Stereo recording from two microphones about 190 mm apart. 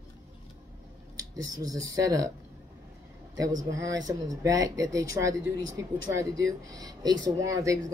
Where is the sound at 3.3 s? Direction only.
20° right (ahead or behind).